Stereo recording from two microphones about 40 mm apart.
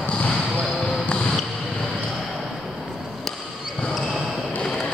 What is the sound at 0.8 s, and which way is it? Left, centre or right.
Basketball bounce, left.